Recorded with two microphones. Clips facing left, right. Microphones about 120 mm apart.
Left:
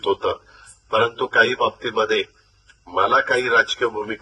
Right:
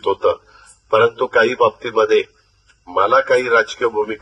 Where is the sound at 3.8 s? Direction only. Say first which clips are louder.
Right 5 dB; 50° right (ahead or behind).